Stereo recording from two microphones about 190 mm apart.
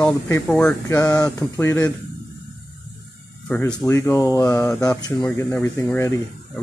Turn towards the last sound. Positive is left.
turn(degrees=15)  # may be behind; listen again after turning